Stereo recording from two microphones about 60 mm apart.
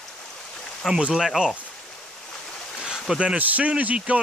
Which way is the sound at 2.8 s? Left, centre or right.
Centre.